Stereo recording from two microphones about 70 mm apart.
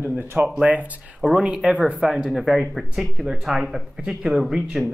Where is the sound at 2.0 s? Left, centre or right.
Centre.